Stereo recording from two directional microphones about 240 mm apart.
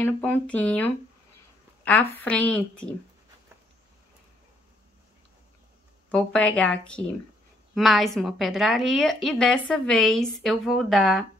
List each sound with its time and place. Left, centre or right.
0.0 s a woman's voice: centre
6.0 s a woman's voice: centre